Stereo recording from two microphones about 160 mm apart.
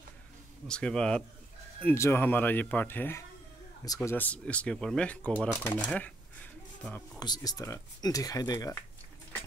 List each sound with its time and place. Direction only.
0.7 s speech: 5° left (ahead or behind)
7.2 s speech: 25° left (ahead or behind)